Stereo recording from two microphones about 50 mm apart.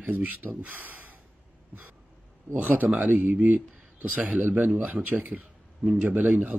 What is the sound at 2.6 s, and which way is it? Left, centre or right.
Speech, right.